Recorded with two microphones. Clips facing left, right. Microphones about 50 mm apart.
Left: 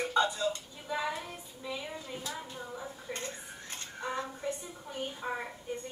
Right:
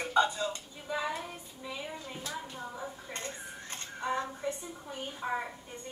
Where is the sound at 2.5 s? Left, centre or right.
Centre.